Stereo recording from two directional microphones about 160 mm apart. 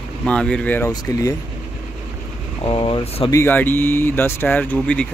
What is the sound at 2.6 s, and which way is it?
Speech, 35° left (ahead or behind).